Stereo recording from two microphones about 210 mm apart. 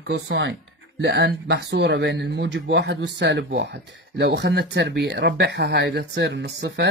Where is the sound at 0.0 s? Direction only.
55° right (ahead or behind).